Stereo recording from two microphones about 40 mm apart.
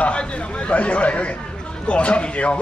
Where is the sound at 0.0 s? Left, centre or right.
Left.